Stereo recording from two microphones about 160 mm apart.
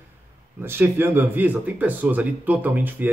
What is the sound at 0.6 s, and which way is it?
Speech, 15° right (ahead or behind).